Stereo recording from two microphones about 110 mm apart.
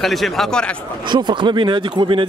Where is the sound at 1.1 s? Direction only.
45° right (ahead or behind).